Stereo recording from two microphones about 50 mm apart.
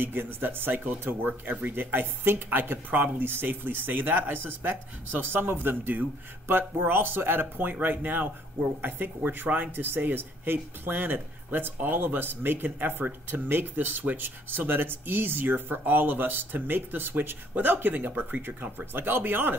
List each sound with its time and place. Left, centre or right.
0.0 s speech: right
18.9 s speech: right